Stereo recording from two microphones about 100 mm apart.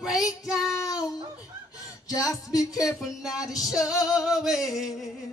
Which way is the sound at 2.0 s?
35° left (ahead or behind).